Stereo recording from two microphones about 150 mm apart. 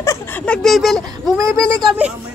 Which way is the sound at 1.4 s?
20° right (ahead or behind).